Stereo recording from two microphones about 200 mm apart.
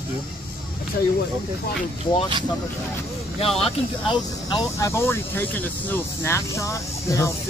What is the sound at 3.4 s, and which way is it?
Speech, 30° left (ahead or behind).